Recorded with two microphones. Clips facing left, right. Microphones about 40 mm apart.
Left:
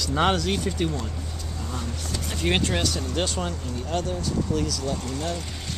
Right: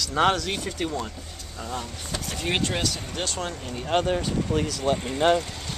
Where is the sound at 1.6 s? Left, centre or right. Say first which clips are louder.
Right 2 dB; centre.